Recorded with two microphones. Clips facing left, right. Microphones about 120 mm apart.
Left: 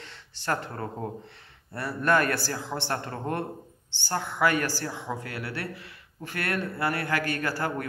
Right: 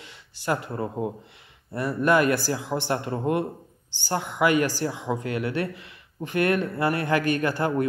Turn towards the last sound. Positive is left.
turn(degrees=-20)  # may be behind; listen again after turning